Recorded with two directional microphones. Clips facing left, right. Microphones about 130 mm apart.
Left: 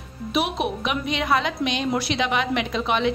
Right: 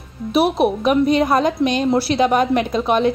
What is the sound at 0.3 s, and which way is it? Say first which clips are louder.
A woman's voice: right 8 dB; 40° right (ahead or behind).